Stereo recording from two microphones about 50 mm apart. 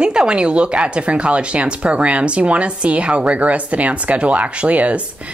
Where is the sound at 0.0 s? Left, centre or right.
Centre.